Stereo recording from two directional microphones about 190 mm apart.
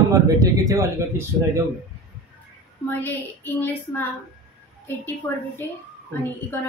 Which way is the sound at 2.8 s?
10° left (ahead or behind).